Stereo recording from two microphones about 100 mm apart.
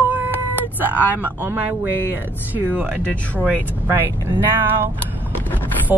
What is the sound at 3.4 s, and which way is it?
Speech, 15° left (ahead or behind).